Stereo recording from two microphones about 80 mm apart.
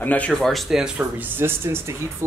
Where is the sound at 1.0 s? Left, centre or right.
Right.